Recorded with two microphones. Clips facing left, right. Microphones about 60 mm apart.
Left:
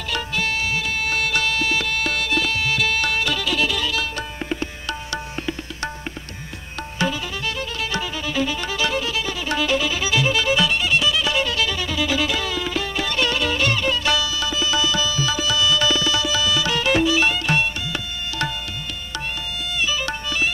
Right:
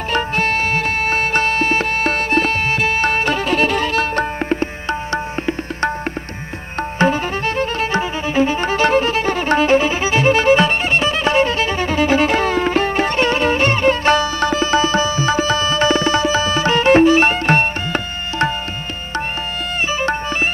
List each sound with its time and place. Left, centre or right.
0.1 s music: right
7.0 s violin: right
19.9 s music: right